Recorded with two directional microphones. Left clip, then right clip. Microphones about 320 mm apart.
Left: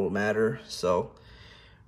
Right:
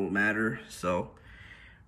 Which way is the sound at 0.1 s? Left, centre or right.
Centre.